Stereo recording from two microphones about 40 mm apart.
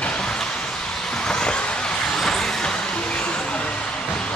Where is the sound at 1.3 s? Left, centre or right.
Left.